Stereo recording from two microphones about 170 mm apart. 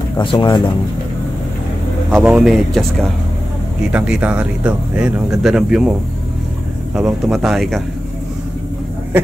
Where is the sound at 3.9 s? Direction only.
5° right (ahead or behind).